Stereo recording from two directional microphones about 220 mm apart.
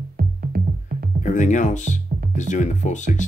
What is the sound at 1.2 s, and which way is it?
Speech, 35° left (ahead or behind).